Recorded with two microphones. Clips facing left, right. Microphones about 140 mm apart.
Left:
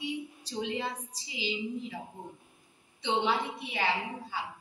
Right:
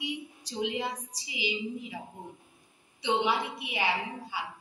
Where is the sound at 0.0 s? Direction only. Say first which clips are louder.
Left 1 dB; 15° right (ahead or behind).